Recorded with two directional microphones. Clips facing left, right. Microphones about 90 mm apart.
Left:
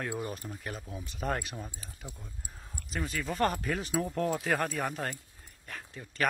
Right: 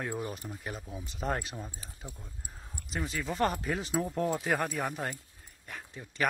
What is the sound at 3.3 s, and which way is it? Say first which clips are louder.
Speech: even; 15° right (ahead or behind).